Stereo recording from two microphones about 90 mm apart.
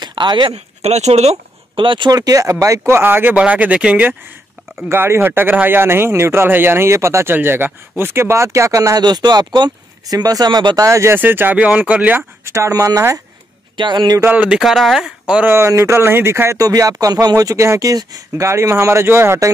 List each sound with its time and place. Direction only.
0.0 s a sound: 60° right (ahead or behind)
1.8 s speech: 65° right (ahead or behind)
2.0 s speech: 45° right (ahead or behind); by 4.2 s 15° right (ahead or behind)
4.8 s speech: 25° right (ahead or behind)
9.0 s speech: 50° right (ahead or behind)
10.9 s speech: 30° right (ahead or behind)
11.1 s speech: 20° right (ahead or behind)
12.4 s speech: 35° right (ahead or behind)
13.7 s a man's voice: 60° right (ahead or behind)
14.2 s speech: 15° right (ahead or behind)
14.6 s speech: centre (ahead or behind)
15.4 s speech: 30° right (ahead or behind)
16.6 s speech: 40° right (ahead or behind)